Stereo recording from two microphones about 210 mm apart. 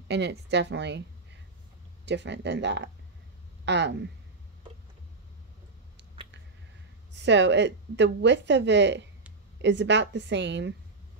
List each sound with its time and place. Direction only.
0.1 s a woman's voice: 55° right (ahead or behind)
2.0 s a woman's voice: 55° right (ahead or behind)
7.2 s a woman's voice: 55° right (ahead or behind)